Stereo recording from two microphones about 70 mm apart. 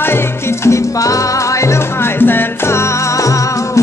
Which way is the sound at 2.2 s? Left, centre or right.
Left.